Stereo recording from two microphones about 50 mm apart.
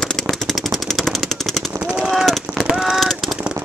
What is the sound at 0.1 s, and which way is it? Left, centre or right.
Machine gun, centre.